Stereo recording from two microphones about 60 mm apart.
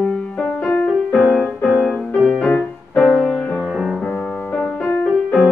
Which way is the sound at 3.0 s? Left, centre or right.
Centre.